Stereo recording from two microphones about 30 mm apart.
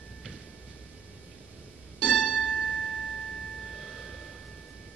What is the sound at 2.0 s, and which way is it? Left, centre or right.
Music, right.